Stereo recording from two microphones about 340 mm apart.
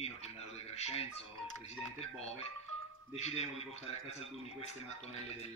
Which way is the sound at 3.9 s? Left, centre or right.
Centre.